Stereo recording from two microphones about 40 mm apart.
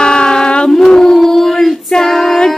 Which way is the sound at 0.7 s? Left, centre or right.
Centre.